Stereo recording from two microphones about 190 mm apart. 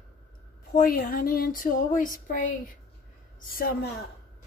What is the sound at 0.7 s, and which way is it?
A woman's voice, 50° left (ahead or behind).